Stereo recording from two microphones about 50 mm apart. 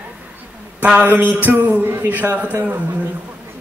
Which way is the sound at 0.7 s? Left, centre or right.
Right.